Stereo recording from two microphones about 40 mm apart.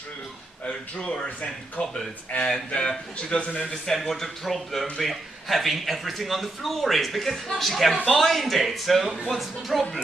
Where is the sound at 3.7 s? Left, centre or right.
Centre.